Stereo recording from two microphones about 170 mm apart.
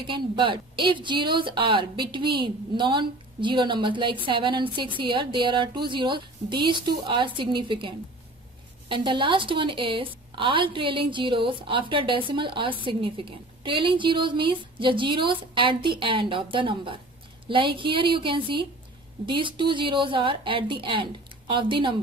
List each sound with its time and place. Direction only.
0.0 s a woman's voice: 30° right (ahead or behind)